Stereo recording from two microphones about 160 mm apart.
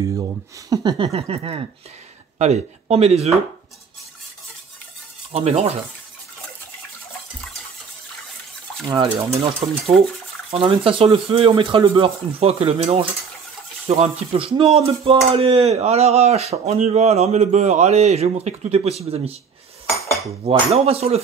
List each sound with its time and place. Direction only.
0.0 s speech: 20° right (ahead or behind)
1.0 s speech: 35° right (ahead or behind)
5.3 s speech: 40° right (ahead or behind)
8.9 s speech: 35° right (ahead or behind)
20.7 s speech: 40° right (ahead or behind)